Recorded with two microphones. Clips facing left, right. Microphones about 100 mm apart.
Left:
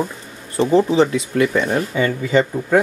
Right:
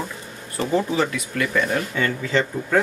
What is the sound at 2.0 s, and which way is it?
Speech, 15° left (ahead or behind).